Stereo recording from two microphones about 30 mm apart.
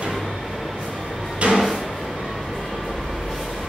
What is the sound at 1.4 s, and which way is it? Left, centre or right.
Drawer open or close, right.